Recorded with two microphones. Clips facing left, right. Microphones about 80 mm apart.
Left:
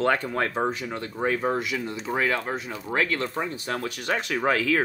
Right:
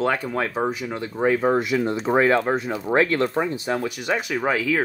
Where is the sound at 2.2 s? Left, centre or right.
Right.